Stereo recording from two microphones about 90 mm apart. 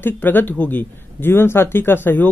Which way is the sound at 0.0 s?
20° left (ahead or behind).